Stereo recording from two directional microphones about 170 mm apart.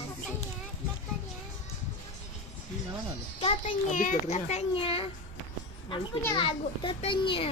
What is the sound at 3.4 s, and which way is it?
A child's voice, 45° left (ahead or behind).